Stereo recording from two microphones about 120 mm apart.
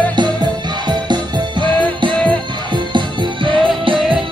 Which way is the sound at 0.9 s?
40° right (ahead or behind).